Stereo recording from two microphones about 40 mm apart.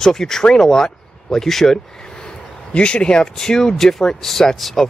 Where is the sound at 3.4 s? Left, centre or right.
Centre.